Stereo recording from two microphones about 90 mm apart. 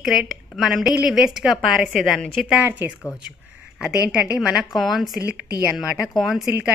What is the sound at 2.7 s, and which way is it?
Speech, 20° right (ahead or behind).